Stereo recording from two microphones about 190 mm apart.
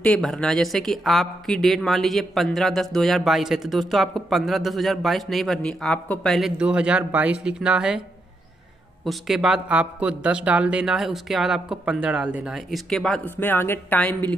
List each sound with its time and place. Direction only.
0.0 s a woman's voice: 5° left (ahead or behind)
9.0 s a woman's voice: centre (ahead or behind)